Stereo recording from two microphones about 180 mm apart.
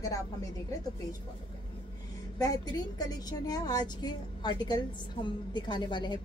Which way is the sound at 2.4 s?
20° left (ahead or behind).